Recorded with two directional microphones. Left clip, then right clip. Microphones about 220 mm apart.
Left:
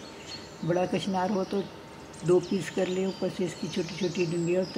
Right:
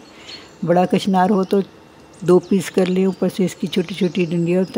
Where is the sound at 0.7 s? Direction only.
50° right (ahead or behind).